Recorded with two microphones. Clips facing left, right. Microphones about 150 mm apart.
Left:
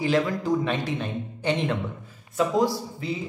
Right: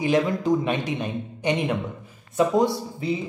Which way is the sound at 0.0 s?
20° right (ahead or behind).